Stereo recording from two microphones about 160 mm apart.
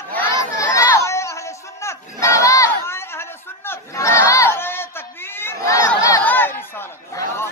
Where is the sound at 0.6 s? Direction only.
20° left (ahead or behind).